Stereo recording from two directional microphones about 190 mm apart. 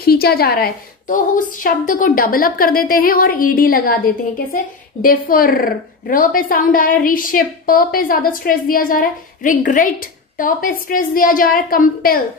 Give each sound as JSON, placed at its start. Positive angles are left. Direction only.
{"t": 0.0, "sound": "a woman's voice", "side_deg": 55}
{"t": 5.0, "sound": "a woman's voice", "side_deg": 50}